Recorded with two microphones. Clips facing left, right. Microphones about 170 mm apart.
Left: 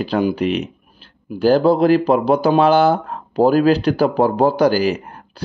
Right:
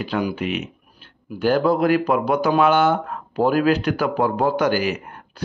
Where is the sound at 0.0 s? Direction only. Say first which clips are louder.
Left 6 dB; 35° left (ahead or behind).